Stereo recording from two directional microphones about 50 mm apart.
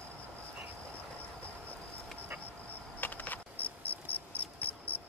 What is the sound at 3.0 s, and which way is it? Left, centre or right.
Cricket, left.